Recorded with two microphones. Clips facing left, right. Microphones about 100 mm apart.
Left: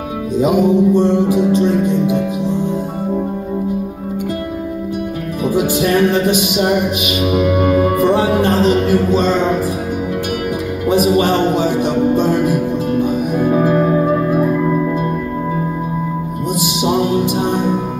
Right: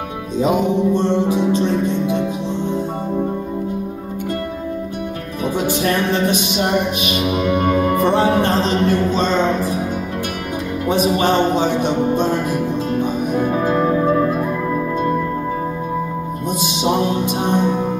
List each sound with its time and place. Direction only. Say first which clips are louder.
0.4 s music: left 4 dB; 15° left (ahead or behind)
5.4 s music: left 4 dB; 15° left (ahead or behind)
11.1 s music: left 2 dB; 25° right (ahead or behind)
13.4 s music: left 4 dB; 15° left (ahead or behind)